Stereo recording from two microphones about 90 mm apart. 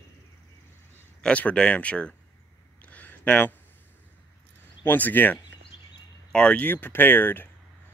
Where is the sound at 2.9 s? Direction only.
15° left (ahead or behind).